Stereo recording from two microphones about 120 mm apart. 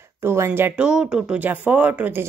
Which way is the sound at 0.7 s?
10° right (ahead or behind).